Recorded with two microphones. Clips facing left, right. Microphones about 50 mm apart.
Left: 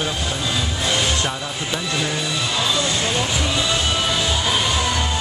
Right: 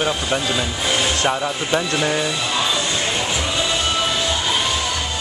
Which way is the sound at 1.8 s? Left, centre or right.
Centre.